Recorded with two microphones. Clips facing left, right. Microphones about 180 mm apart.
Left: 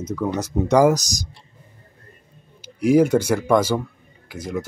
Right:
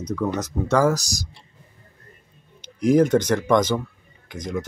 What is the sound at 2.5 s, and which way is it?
Speech, 10° left (ahead or behind).